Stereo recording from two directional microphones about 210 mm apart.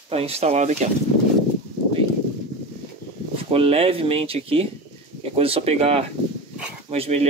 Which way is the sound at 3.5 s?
30° right (ahead or behind).